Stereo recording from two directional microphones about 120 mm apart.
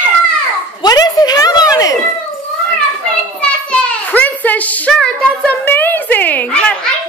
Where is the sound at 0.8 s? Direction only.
35° left (ahead or behind).